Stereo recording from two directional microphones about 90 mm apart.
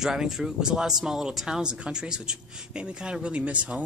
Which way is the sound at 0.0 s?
5° right (ahead or behind).